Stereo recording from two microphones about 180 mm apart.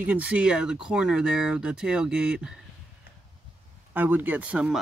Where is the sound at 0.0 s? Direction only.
10° right (ahead or behind).